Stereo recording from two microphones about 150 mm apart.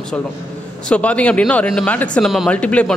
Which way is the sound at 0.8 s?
10° left (ahead or behind).